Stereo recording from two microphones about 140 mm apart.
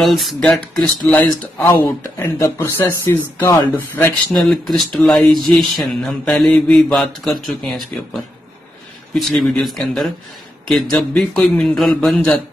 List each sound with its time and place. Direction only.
0.0 s speech: centre (ahead or behind); by 4.1 s 15° left (ahead or behind)
4.3 s speech: centre (ahead or behind)